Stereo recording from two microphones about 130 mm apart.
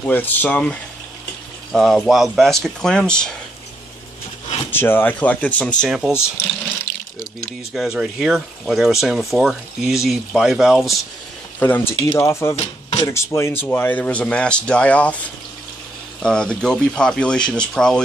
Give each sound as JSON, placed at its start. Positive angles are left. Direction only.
{"t": 0.0, "sound": "speech", "side_deg": 15}
{"t": 4.6, "sound": "speech", "side_deg": 15}
{"t": 5.9, "sound": "speech", "side_deg": -5}
{"t": 7.7, "sound": "speech", "side_deg": 0}
{"t": 11.6, "sound": "speech", "side_deg": 20}
{"t": 16.2, "sound": "speech", "side_deg": 5}